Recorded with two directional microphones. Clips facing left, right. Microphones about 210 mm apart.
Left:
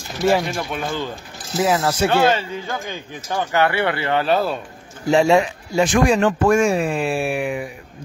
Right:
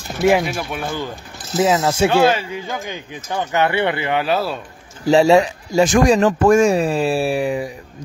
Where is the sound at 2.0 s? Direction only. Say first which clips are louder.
Right 2 dB; 10° right (ahead or behind).